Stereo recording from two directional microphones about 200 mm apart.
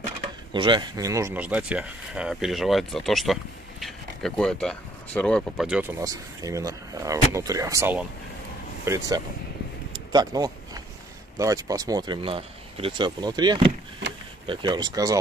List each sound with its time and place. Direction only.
0.5 s speech: 25° right (ahead or behind)
9.9 s a sound: 20° right (ahead or behind)
11.3 s speech: 15° right (ahead or behind)